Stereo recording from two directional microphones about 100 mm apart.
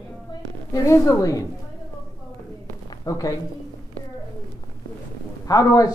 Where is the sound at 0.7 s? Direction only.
30° left (ahead or behind).